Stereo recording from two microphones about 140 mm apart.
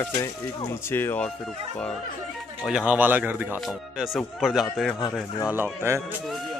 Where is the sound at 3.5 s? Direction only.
Centre (ahead or behind).